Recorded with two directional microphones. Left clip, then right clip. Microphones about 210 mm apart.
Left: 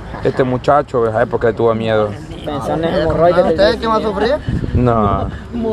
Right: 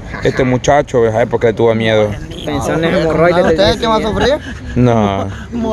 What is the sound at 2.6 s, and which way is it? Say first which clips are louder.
Speech: right 2 dB; 55° right (ahead or behind).